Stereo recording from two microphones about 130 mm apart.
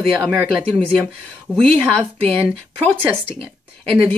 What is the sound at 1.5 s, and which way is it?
Speech, 5° left (ahead or behind).